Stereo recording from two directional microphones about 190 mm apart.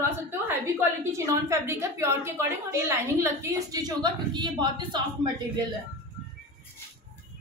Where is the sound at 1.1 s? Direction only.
15° right (ahead or behind).